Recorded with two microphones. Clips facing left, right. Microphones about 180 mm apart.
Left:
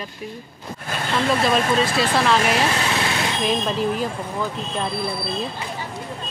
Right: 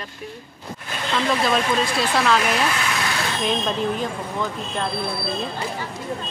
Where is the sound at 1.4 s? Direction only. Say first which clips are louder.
Left 2 dB; centre (ahead or behind).